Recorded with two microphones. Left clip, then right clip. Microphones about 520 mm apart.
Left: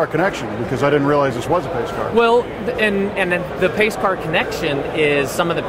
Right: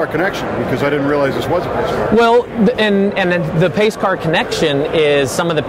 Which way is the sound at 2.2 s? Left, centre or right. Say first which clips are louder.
Right 2 dB; right.